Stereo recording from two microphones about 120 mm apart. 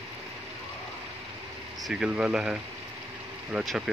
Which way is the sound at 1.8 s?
10° right (ahead or behind).